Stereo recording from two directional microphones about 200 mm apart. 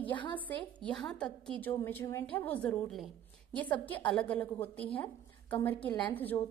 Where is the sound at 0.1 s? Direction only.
25° left (ahead or behind).